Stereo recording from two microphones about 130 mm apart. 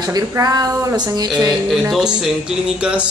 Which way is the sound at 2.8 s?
10° right (ahead or behind).